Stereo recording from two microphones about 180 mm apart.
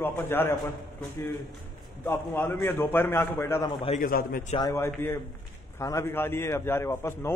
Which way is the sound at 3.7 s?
25° left (ahead or behind).